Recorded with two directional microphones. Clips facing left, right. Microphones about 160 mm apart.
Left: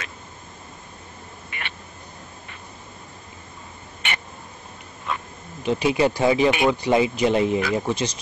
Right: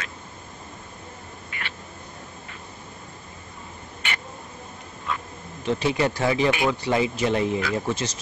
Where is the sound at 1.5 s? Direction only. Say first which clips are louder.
Left 1 dB; 20° left (ahead or behind).